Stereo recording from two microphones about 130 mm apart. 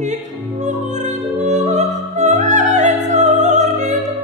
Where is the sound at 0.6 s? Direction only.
65° right (ahead or behind).